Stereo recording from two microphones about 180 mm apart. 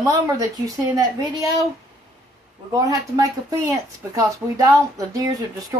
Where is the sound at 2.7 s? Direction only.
20° right (ahead or behind).